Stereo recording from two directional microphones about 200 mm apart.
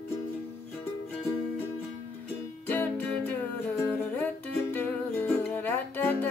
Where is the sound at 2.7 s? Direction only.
10° left (ahead or behind).